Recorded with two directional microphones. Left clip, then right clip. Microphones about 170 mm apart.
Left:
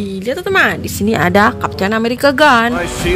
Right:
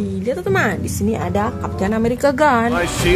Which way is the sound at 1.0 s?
15° left (ahead or behind).